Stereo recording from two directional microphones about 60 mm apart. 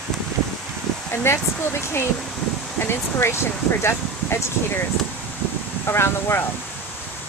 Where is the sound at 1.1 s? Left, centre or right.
Left.